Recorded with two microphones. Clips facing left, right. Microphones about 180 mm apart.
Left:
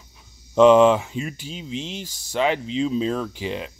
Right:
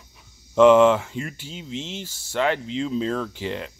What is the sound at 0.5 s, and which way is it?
Speech, 15° left (ahead or behind).